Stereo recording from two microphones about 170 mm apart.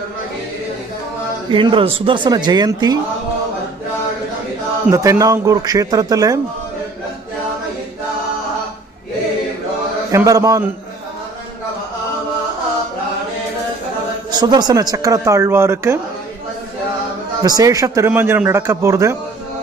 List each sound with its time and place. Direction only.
1.5 s speech: 30° right (ahead or behind)
4.9 s speech: 20° right (ahead or behind)
10.1 s speech: 20° right (ahead or behind)
14.3 s speech: 25° right (ahead or behind)
17.4 s speech: 20° right (ahead or behind)